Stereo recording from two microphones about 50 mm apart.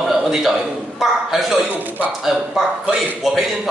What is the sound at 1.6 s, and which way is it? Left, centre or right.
Speech, right.